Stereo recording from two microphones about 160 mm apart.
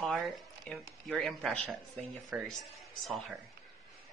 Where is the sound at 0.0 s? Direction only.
Centre (ahead or behind).